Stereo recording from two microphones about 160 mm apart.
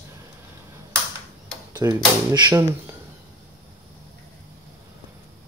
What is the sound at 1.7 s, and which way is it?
Speech, 25° right (ahead or behind).